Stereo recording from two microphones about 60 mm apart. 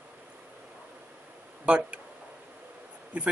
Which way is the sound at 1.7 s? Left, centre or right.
Right.